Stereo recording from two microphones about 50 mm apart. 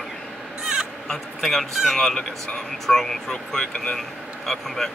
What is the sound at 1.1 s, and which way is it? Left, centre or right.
Speech, centre.